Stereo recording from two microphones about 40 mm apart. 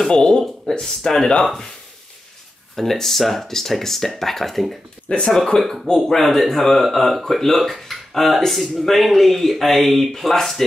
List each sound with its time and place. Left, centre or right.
0.1 s speech: centre
2.7 s speech: centre
5.0 s speech: left
5.6 s speech: centre